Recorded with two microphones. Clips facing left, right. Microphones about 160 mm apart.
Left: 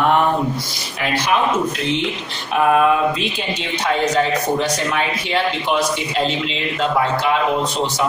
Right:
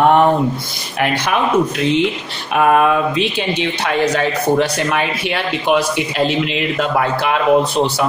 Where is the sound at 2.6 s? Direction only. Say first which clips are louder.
Right 2 dB; 65° right (ahead or behind).